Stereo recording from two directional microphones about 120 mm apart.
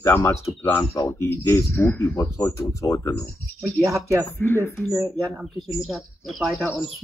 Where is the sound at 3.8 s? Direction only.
25° right (ahead or behind).